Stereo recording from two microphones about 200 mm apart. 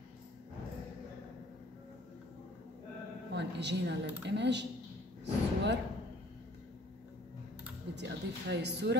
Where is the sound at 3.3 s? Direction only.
60° right (ahead or behind).